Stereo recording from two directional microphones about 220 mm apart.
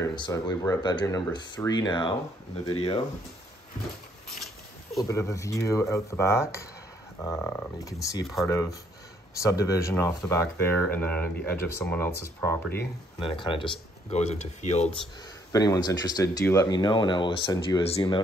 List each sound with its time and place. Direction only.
0.0 s speech: 15° left (ahead or behind)
4.9 s speech: 15° left (ahead or behind)
13.2 s speech: 25° left (ahead or behind)
15.5 s speech: 15° left (ahead or behind)